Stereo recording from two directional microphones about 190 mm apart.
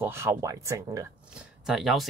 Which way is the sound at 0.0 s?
10° right (ahead or behind).